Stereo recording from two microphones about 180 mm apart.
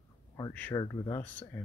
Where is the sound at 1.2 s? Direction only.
10° left (ahead or behind).